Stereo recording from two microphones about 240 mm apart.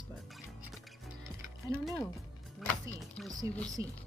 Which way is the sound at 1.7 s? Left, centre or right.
Centre.